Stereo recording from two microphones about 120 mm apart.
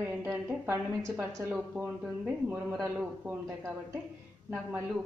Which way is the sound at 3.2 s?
15° right (ahead or behind).